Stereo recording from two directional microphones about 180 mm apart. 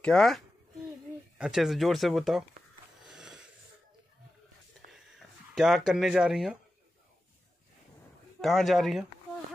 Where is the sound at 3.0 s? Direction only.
5° right (ahead or behind).